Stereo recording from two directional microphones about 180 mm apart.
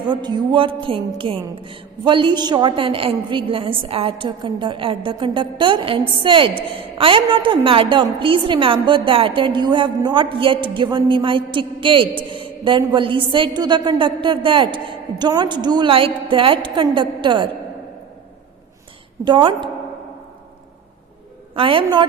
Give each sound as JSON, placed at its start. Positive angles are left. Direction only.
{"t": 0.0, "sound": "a woman's voice", "side_deg": -25}
{"t": 19.2, "sound": "a woman's voice", "side_deg": -25}
{"t": 21.5, "sound": "a woman's voice", "side_deg": -30}